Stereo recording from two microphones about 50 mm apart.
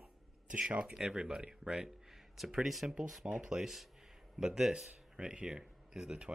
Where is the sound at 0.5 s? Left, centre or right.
Centre.